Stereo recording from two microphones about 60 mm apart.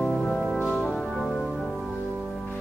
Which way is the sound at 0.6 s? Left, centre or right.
Left.